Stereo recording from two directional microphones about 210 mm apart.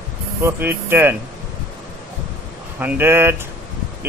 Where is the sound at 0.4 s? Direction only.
10° right (ahead or behind).